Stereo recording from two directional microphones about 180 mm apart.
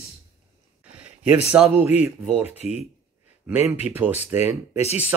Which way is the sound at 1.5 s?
5° right (ahead or behind).